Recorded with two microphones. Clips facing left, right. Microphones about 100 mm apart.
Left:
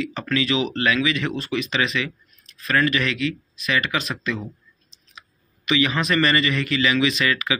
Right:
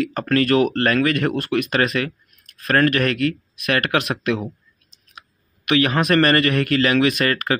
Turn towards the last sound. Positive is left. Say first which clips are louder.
# right 3 dB
turn(degrees=-50)  # may be behind; listen again after turning